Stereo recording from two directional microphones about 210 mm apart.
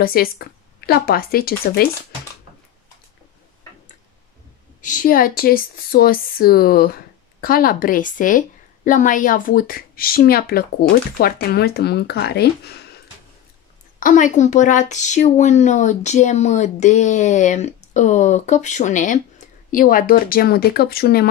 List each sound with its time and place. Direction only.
0.0 s speech: 45° left (ahead or behind)
4.8 s speech: 40° left (ahead or behind)
13.9 s speech: 40° left (ahead or behind)